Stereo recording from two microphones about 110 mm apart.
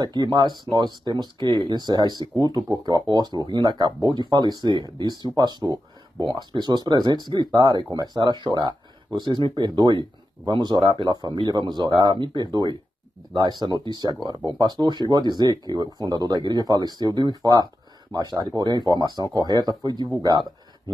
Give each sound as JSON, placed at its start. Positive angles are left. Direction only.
{"t": 0.0, "sound": "speech", "side_deg": -40}